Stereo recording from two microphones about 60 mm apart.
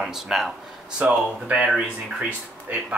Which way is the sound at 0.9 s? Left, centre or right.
Centre.